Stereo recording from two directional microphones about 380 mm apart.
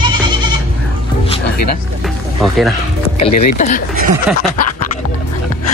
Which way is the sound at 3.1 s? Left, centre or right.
Centre.